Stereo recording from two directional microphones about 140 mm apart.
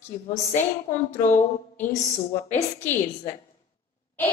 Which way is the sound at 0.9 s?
60° left (ahead or behind).